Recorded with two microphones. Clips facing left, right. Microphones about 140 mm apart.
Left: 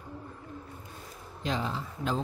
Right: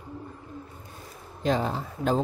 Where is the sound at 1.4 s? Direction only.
50° right (ahead or behind).